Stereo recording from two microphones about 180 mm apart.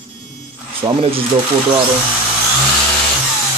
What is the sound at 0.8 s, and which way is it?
Speech, 30° right (ahead or behind).